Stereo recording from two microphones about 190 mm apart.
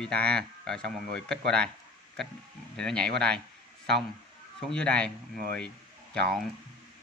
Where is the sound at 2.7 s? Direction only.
5° left (ahead or behind).